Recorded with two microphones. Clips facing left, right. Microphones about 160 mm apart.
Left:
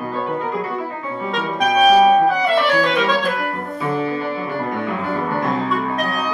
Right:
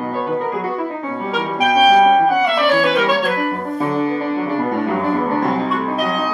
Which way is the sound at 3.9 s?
40° right (ahead or behind).